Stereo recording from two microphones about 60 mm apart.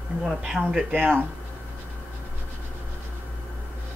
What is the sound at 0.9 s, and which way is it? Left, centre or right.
Speech, right.